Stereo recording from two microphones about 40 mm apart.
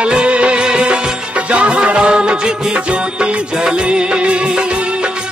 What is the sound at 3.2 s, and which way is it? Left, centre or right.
Music of bollywood, right.